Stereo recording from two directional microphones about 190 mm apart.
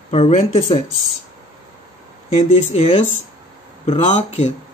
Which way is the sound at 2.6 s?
35° left (ahead or behind).